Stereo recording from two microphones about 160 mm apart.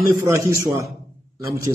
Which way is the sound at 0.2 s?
20° right (ahead or behind).